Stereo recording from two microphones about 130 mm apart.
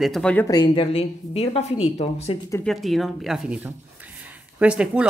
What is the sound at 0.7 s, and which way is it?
A woman's voice, 45° left (ahead or behind).